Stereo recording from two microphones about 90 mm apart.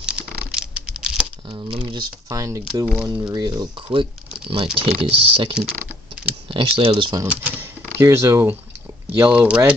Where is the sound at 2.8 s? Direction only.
5° right (ahead or behind).